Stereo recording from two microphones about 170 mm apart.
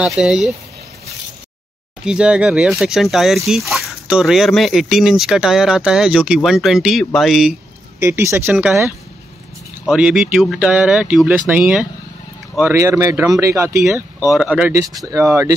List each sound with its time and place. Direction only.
0.0 s speech: centre (ahead or behind)
2.0 s speech: 5° right (ahead or behind)
8.0 s speech: 15° right (ahead or behind)
15.0 s speech: 20° right (ahead or behind)